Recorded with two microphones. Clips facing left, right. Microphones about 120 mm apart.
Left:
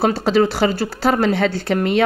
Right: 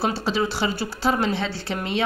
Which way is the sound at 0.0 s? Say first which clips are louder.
Left 8 dB; 50° left (ahead or behind).